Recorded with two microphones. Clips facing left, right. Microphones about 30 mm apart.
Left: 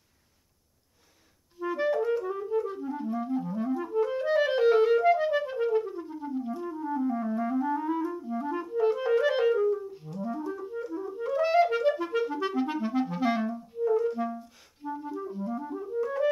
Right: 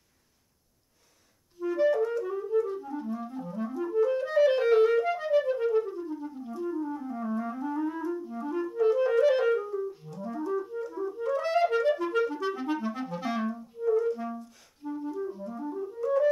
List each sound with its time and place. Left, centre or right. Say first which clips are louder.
1.6 s clarinet: right 3 dB; centre
2.0 s music: left 1 dB; centre
2.5 s clarinet: right 3 dB; centre
13.4 s clarinet: left 2 dB; centre
13.8 s clarinet: even; centre